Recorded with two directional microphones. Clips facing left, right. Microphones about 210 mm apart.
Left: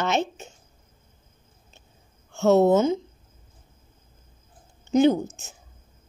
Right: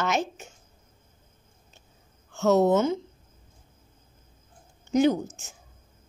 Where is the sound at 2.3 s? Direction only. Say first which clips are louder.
Left 3 dB; 25° left (ahead or behind).